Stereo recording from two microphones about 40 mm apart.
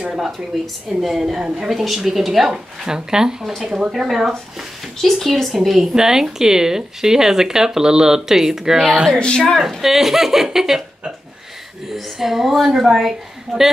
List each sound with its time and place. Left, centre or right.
0.5 s a woman's voice: centre
4.9 s speech: centre
9.2 s a woman's voice: centre
9.6 s speech: centre
11.9 s speech: centre